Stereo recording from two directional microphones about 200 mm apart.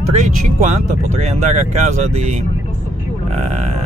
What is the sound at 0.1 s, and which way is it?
Speech, 35° right (ahead or behind).